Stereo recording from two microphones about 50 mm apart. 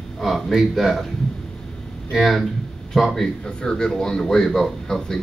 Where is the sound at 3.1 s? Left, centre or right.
Centre.